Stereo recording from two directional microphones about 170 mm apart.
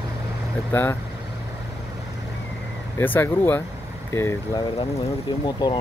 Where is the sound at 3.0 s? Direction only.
10° left (ahead or behind).